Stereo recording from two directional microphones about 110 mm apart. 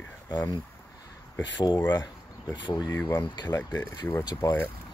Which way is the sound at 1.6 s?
40° left (ahead or behind).